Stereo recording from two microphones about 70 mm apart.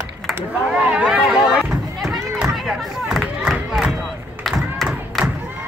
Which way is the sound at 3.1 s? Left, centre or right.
Centre.